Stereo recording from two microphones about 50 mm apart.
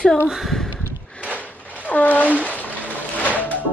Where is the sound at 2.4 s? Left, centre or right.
Left.